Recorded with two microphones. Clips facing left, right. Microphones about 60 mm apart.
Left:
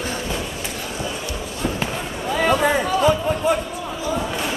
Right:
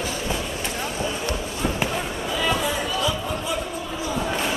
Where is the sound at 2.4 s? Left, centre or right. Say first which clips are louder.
Left 7 dB; left.